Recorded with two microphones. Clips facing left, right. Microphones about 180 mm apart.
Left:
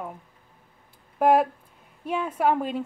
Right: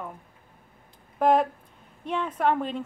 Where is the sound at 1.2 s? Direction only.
10° left (ahead or behind).